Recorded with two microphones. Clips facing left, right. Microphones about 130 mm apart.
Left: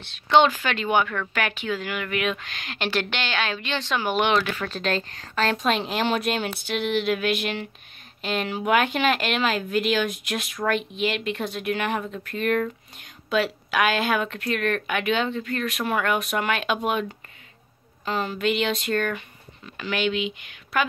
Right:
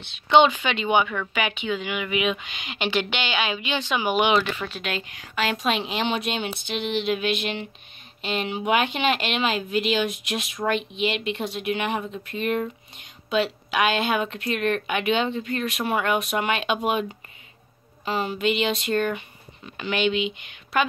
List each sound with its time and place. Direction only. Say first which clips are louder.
0.0 s speech: right 1 dB; centre (ahead or behind)
4.6 s a woman's voice: left 4 dB; 35° left (ahead or behind)
5.6 s speech: left 1 dB; centre (ahead or behind)
6.9 s music: left 1 dB; 50° left (ahead or behind)
8.2 s speech: even; centre (ahead or behind)
18.0 s speech: right 1 dB; 5° right (ahead or behind)